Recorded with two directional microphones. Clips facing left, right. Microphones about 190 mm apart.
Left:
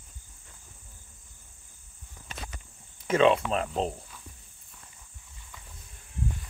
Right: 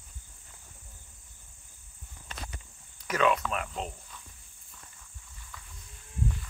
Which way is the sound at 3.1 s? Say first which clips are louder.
Left 5 dB; 25° left (ahead or behind).